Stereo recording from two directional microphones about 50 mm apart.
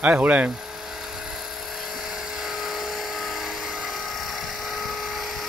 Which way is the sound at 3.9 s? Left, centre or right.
Centre.